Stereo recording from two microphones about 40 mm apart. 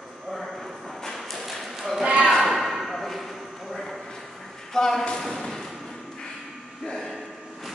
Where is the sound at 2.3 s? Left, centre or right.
Centre.